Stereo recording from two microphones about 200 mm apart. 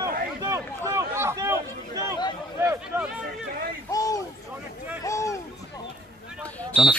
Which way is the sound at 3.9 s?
15° left (ahead or behind).